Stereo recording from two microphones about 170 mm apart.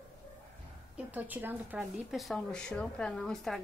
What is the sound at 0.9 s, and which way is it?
A woman's voice, 10° right (ahead or behind).